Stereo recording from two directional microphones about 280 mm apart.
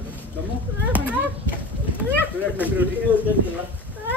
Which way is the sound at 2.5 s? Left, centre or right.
Centre.